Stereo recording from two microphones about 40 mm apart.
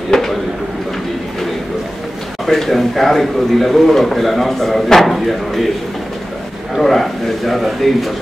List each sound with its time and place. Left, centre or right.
0.1 s speech: centre
2.4 s speech: centre
6.8 s speech: centre